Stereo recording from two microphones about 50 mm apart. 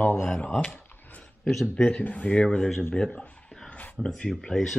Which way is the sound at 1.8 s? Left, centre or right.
Left.